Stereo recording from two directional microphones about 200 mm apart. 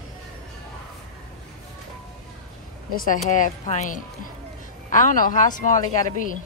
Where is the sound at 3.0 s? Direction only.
40° left (ahead or behind).